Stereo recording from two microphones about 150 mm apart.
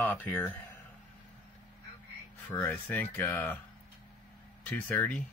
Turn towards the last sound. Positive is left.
turn(degrees=10)  # may be behind; listen again after turning